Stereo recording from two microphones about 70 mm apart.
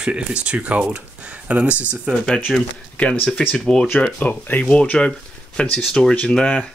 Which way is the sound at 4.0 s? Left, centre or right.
Left.